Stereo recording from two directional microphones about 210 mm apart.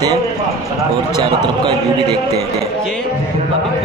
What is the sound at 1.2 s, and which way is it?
Speech, 20° right (ahead or behind).